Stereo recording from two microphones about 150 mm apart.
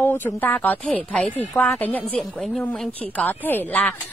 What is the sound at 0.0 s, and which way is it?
A woman's voice, 10° left (ahead or behind).